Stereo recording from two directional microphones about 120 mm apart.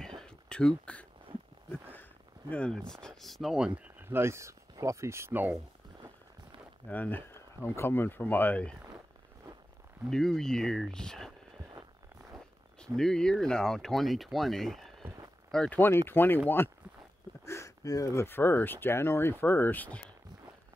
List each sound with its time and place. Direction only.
0.2 s a sound: 5° left (ahead or behind)
2.5 s speech: 10° left (ahead or behind)
4.0 s speech: 20° right (ahead or behind)
6.9 s speech: 15° left (ahead or behind)
10.0 s speech: 5° left (ahead or behind)
12.8 s speech: 5° left (ahead or behind)
16.1 s speech: 20° left (ahead or behind)